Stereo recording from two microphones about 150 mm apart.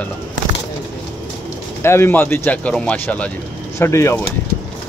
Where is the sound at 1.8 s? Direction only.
15° left (ahead or behind).